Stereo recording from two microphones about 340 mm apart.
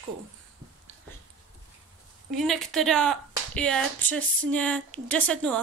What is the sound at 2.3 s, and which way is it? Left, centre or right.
Speech, centre.